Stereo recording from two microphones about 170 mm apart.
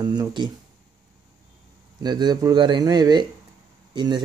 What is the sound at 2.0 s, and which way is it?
Speech, 25° right (ahead or behind).